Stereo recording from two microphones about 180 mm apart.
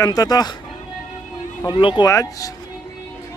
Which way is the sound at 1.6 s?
30° left (ahead or behind).